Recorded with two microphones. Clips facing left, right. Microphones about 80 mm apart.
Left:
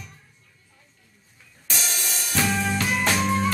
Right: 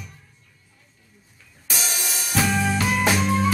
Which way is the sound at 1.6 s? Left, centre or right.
Centre.